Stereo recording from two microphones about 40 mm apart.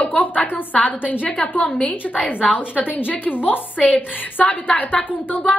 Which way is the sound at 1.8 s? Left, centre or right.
Left.